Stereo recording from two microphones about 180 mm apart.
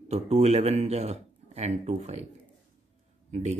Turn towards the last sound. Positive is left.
turn(degrees=-40)  # may be behind; listen again after turning